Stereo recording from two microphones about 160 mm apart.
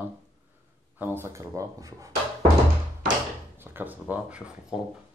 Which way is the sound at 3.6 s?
10° right (ahead or behind).